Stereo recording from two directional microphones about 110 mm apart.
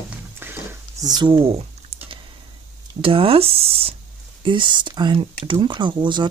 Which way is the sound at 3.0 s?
55° right (ahead or behind).